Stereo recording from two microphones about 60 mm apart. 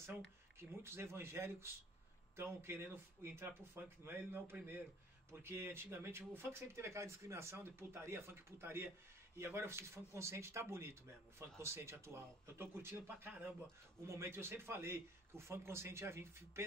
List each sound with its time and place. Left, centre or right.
0.0 s speech: right